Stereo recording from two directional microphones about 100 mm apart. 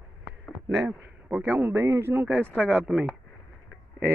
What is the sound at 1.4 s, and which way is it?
Speech, 20° right (ahead or behind).